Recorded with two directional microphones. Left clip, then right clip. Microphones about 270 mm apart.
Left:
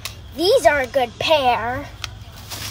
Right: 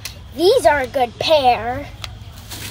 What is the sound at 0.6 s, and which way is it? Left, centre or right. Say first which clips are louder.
A child's voice: right 1 dB; centre.